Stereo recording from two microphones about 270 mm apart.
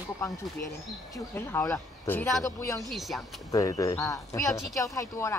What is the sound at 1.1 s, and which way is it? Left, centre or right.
Speech, centre.